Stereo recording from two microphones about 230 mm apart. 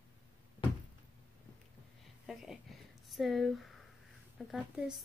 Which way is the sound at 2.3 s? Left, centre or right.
Centre.